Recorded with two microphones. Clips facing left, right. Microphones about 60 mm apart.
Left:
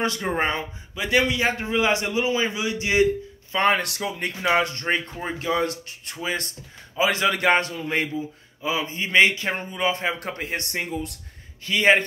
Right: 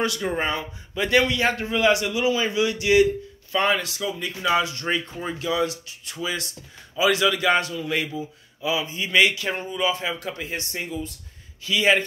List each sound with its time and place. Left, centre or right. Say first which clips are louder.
0.0 s speech: left 1 dB; left
0.9 s a man's voice: right 1 dB; centre
3.6 s speech: left 3 dB; left